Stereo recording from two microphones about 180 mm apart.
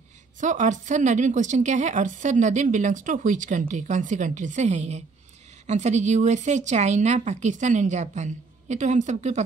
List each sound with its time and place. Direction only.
0.4 s a woman's voice: 45° right (ahead or behind)